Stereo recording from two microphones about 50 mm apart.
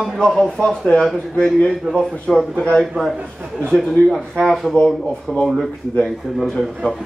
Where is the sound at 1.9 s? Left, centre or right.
Centre.